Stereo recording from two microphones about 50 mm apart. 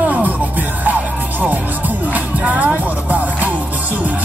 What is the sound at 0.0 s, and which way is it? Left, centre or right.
Music, right.